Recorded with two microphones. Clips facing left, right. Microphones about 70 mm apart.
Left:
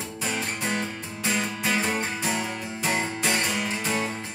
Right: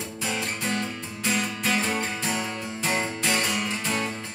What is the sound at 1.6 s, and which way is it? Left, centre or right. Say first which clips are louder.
Music: even; centre.